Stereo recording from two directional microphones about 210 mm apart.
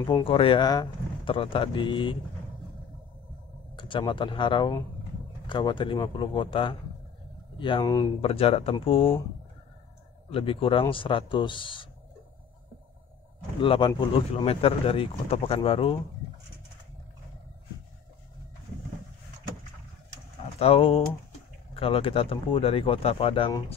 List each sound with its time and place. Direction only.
0.1 s speech: 25° left (ahead or behind)
3.7 s speech: 20° left (ahead or behind)
8.2 s speech: 30° left (ahead or behind)
10.3 s speech: 25° left (ahead or behind)
13.6 s speech: 25° left (ahead or behind)
20.5 s speech: 30° left (ahead or behind)